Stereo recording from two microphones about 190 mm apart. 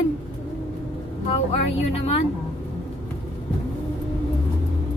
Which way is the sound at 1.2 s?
30° left (ahead or behind).